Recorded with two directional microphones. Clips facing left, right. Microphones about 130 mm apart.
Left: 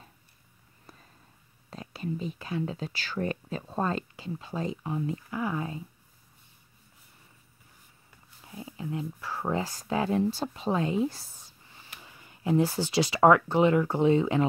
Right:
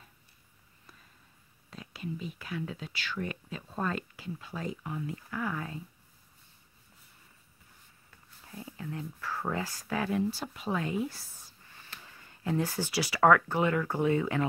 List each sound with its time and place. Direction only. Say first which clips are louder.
1.7 s speech: left 4 dB; 35° left (ahead or behind)
8.5 s speech: left 4 dB; 15° left (ahead or behind)